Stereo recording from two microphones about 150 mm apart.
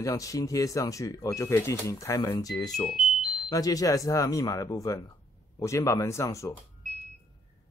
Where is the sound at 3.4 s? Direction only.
25° left (ahead or behind).